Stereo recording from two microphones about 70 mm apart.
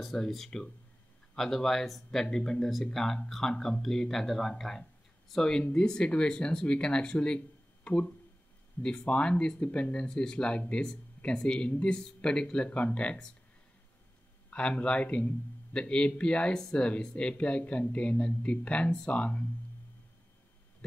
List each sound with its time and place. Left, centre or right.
0.0 s a man's voice: centre
14.5 s a man's voice: centre